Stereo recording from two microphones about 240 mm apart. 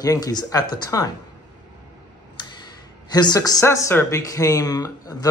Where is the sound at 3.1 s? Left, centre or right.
Centre.